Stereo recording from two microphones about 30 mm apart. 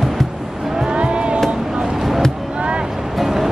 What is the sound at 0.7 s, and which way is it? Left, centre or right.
Vehicle, right.